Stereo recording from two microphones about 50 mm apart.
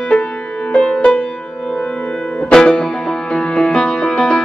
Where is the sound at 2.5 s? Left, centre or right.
Centre.